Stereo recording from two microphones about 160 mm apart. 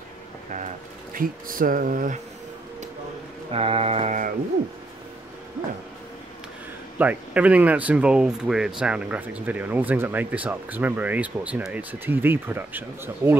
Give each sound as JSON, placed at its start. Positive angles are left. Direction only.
{"t": 1.1, "sound": "speech", "side_deg": -60}
{"t": 3.5, "sound": "mantra", "side_deg": -35}
{"t": 7.0, "sound": "speech", "side_deg": -10}